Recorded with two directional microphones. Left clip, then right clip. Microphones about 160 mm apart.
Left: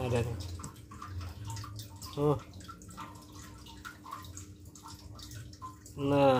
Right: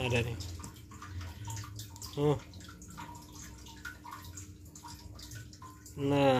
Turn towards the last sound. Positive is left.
turn(degrees=0)  # may be behind; listen again after turning